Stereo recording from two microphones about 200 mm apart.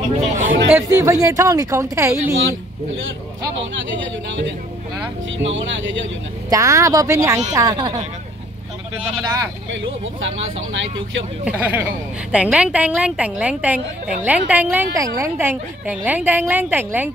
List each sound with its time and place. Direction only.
0.4 s speech: 40° right (ahead or behind)
0.7 s a woman's voice: 15° right (ahead or behind)
5.4 s speech: 70° right (ahead or behind)
6.5 s a woman's voice: 15° right (ahead or behind)
9.2 s a woman's voice: 15° right (ahead or behind)
10.2 s speech: 70° right (ahead or behind)
11.4 s a woman's voice: 10° right (ahead or behind)